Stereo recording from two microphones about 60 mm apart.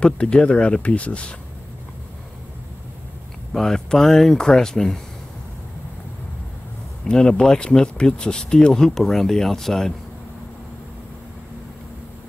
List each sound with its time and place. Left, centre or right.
0.0 s speech: centre
3.5 s speech: centre
7.1 s speech: centre